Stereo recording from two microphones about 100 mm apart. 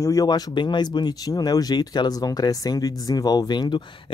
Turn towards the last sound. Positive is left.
turn(degrees=45)  # may be behind; listen again after turning